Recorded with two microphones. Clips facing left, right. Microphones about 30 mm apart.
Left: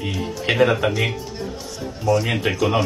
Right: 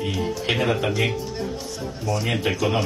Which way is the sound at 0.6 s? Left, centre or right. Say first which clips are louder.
Left 8 dB; centre.